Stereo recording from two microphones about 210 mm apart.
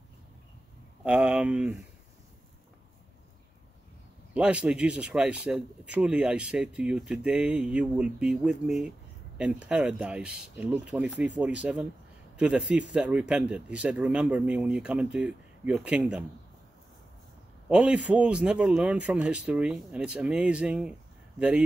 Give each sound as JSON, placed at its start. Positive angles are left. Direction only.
{"t": 1.0, "sound": "speech", "side_deg": -5}
{"t": 4.3, "sound": "speech", "side_deg": -5}
{"t": 17.6, "sound": "speech", "side_deg": -5}